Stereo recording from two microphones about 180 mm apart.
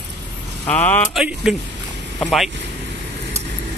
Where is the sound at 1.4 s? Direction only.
Centre (ahead or behind).